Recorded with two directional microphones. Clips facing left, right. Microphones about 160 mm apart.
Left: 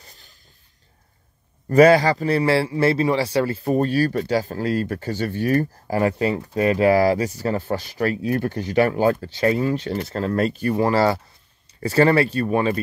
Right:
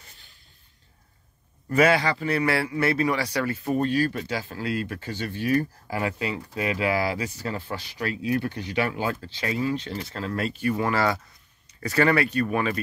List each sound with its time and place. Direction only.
0.0 s a sound: 40° left (ahead or behind)
1.7 s a man's voice: 40° left (ahead or behind)
3.6 s a man's voice: 40° left (ahead or behind)